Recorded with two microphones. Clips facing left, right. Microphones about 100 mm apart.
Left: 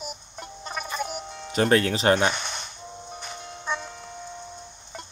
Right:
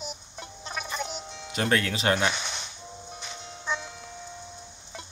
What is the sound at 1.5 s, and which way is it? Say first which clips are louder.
Speech: left 5 dB; 35° left (ahead or behind).